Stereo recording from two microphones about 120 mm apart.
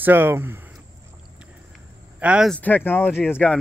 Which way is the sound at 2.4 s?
10° left (ahead or behind).